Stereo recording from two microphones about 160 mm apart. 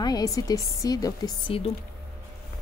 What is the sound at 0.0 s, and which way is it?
Speech, 25° left (ahead or behind).